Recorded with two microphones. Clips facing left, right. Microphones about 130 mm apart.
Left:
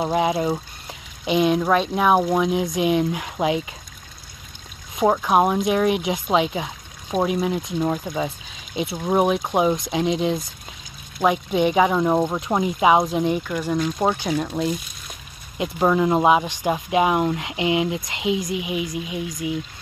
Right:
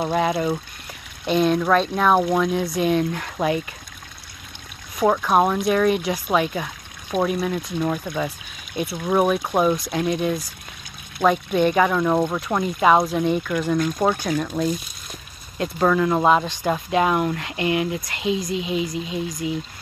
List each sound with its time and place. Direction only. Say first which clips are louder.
0.0 s speech: left 1 dB; 10° left (ahead or behind)
4.9 s speech: even; 20° left (ahead or behind)